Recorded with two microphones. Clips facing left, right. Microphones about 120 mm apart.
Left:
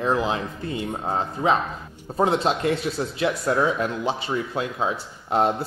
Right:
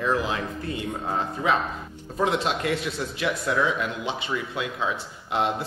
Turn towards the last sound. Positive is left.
turn(degrees=40)  # may be behind; listen again after turning